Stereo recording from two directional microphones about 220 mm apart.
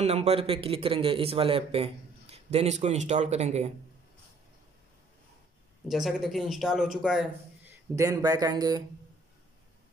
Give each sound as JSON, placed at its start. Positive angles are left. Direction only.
{"t": 0.0, "sound": "a man's voice", "side_deg": -30}
{"t": 5.9, "sound": "a man's voice", "side_deg": 0}
{"t": 7.9, "sound": "speech", "side_deg": -15}